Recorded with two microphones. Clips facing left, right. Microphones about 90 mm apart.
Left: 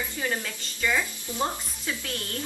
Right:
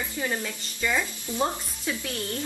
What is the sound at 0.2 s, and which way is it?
A woman's voice, 15° right (ahead or behind).